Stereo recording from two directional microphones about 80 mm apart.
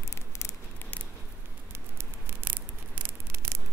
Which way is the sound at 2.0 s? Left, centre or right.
Right.